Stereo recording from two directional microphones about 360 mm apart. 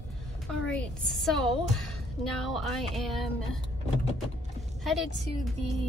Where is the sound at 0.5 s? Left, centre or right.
Centre.